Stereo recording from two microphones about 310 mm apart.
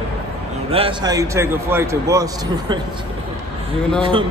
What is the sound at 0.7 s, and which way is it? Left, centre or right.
A man's voice, centre.